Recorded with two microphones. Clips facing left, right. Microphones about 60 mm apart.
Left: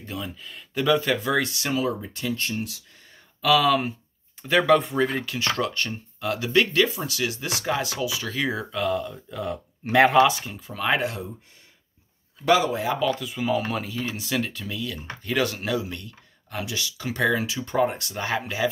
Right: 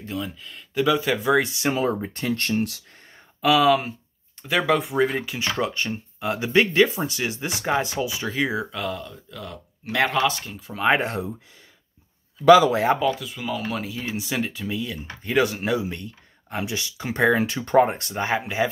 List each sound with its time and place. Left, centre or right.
0.0 s speech: centre
1.4 s speech: right
2.5 s speech: right
3.3 s speech: centre
3.6 s speech: centre
4.9 s speech: centre
8.7 s speech: centre
9.1 s speech: left
10.7 s speech: right
13.1 s speech: centre
13.9 s speech: centre